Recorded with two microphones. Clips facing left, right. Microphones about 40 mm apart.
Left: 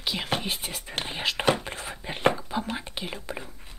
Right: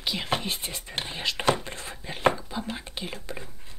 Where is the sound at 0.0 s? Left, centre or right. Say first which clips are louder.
Even; centre.